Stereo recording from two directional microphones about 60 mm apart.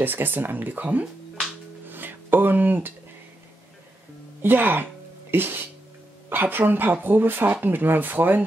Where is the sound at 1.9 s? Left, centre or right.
Right.